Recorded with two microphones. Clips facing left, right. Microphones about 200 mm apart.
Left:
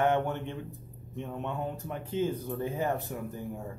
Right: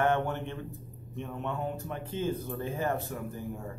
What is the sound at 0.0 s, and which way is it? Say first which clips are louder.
Speech: left 1 dB; 15° left (ahead or behind).